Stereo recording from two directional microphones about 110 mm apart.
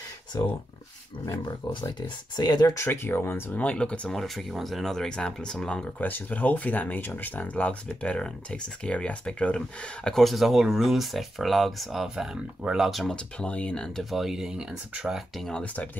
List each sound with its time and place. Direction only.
0.3 s speech: 35° left (ahead or behind); by 15.6 s centre (ahead or behind)
15.6 s speech: 15° left (ahead or behind)